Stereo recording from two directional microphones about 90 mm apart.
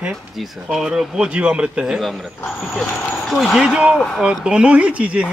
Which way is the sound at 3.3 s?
Centre (ahead or behind).